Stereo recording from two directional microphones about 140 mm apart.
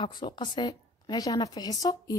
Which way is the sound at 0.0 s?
30° left (ahead or behind).